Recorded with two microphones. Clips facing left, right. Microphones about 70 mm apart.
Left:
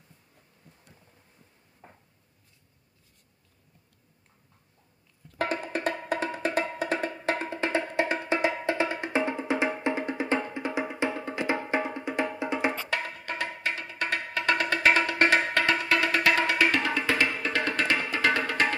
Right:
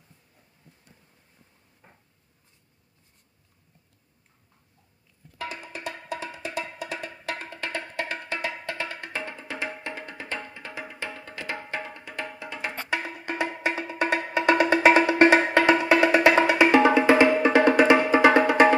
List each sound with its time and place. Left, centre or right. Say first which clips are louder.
5.4 s music: left 6 dB; left
12.9 s music: right 2 dB; centre